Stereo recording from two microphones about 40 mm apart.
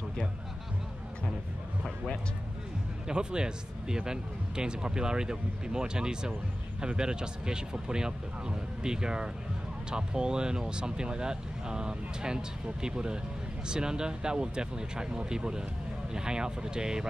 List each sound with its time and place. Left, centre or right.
3.1 s speech: right